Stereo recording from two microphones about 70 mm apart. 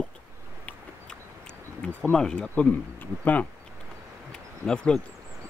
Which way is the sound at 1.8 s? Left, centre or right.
Centre.